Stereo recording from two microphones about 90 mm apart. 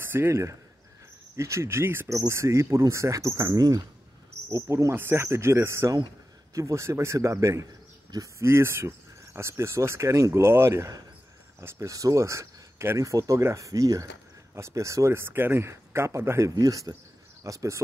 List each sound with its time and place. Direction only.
0.0 s speech: 25° right (ahead or behind)